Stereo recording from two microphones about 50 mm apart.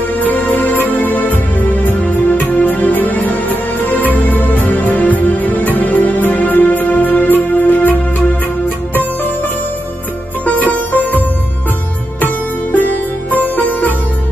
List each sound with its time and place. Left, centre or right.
0.2 s music: left
10.4 s music: left
12.7 s music: left